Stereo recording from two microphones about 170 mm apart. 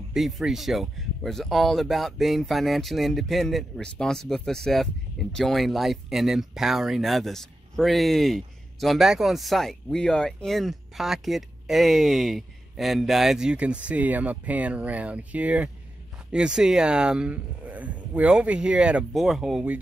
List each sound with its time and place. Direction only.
0.1 s speech: centre (ahead or behind)